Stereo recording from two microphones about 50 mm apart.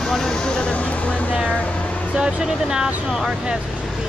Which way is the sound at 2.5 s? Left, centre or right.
Centre.